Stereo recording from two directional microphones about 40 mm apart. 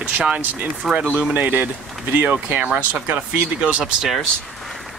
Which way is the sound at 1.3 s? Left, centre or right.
Right.